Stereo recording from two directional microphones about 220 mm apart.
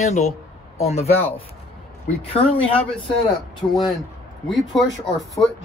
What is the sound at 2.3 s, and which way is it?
Speech, 25° left (ahead or behind).